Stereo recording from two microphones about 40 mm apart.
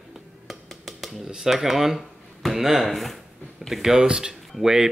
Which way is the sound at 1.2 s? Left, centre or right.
Centre.